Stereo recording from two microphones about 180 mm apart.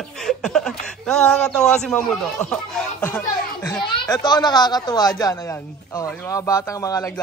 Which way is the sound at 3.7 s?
25° left (ahead or behind).